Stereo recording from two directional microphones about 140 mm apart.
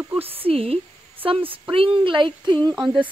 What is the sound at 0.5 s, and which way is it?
A woman's voice, 45° right (ahead or behind).